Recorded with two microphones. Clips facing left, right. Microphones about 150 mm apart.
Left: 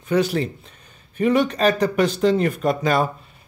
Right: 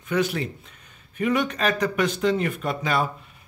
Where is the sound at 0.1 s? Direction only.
35° left (ahead or behind).